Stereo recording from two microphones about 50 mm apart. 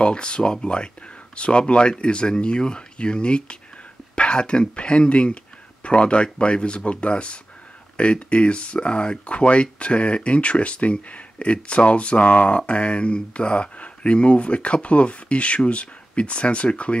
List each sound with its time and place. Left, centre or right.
0.0 s speech: centre